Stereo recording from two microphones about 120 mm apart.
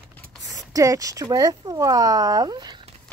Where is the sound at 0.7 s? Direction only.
30° right (ahead or behind).